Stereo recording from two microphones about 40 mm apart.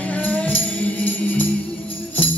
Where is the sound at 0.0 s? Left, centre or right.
Left.